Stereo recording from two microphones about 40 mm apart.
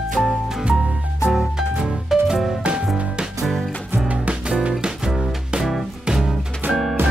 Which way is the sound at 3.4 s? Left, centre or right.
Centre.